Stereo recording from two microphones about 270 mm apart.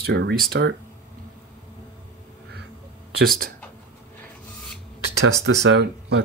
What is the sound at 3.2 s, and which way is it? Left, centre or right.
Speech, right.